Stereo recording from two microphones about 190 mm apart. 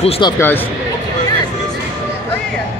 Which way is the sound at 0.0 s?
30° left (ahead or behind).